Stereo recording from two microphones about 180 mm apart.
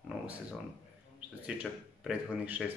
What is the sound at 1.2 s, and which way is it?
Speech, 5° right (ahead or behind).